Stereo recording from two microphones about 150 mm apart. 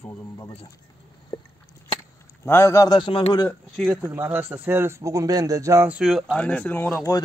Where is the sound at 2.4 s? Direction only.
15° left (ahead or behind); by 3.4 s 35° left (ahead or behind).